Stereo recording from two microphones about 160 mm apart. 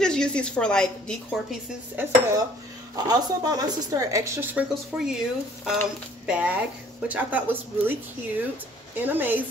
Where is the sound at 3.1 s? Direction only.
25° right (ahead or behind); by 5.2 s 5° right (ahead or behind).